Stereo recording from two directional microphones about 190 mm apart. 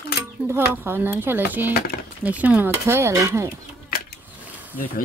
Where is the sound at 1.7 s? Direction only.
50° left (ahead or behind).